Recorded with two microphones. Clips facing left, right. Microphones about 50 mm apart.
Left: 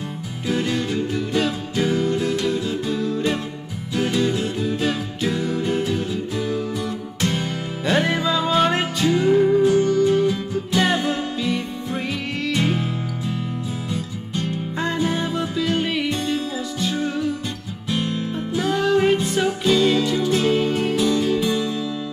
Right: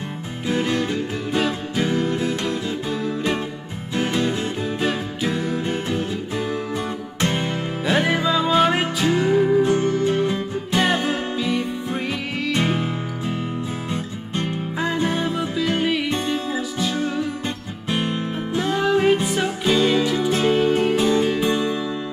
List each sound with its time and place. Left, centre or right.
0.5 s music: centre
5.9 s music: right
7.8 s music: centre
9.6 s music: right
11.1 s music: centre
12.5 s music: right
15.0 s music: centre
17.8 s music: right
18.6 s music: centre
19.6 s music: centre